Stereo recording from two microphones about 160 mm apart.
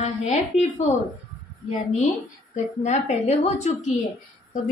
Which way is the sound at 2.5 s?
45° left (ahead or behind).